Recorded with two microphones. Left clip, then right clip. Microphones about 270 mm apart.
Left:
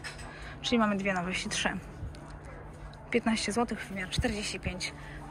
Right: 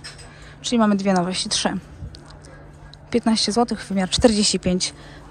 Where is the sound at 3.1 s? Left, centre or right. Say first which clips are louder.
Right 9 dB; centre.